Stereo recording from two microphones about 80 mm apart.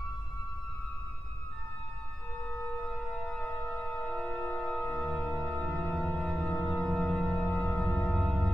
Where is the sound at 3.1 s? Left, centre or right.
Centre.